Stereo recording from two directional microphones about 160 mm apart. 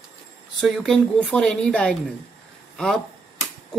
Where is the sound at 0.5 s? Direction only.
Centre (ahead or behind).